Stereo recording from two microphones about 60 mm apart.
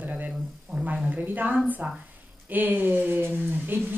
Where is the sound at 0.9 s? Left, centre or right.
Centre.